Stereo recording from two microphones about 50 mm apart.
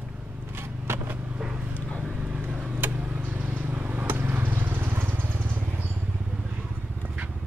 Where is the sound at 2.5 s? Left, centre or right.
Centre.